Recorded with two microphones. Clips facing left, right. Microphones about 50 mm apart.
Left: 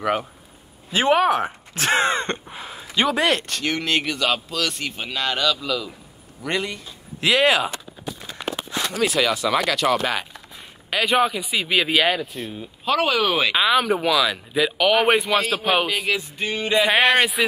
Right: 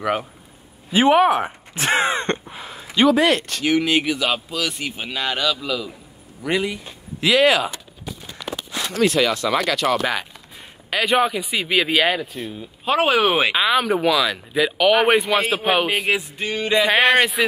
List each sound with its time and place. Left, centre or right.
0.0 s speech: centre
0.9 s speech: centre
8.9 s speech: centre
12.8 s speech: right
13.6 s speech: centre
15.4 s speech: right
15.9 s music: right
16.7 s speech: centre